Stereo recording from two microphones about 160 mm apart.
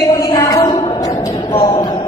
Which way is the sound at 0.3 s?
25° left (ahead or behind).